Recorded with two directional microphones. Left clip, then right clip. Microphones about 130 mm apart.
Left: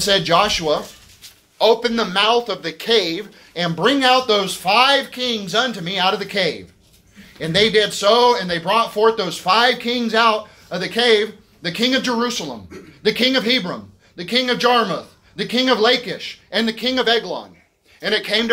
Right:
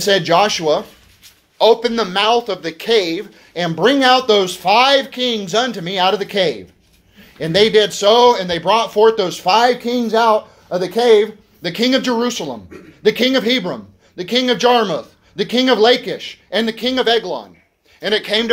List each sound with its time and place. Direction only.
0.0 s speech: 40° right (ahead or behind)
18.0 s speech: 50° right (ahead or behind)